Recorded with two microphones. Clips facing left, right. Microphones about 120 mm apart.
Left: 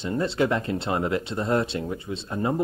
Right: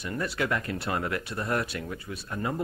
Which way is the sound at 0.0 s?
25° left (ahead or behind).